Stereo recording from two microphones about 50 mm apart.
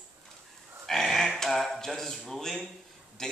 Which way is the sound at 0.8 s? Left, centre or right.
Centre.